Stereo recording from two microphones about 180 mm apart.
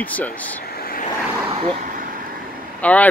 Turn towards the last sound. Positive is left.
turn(degrees=10)  # may be behind; listen again after turning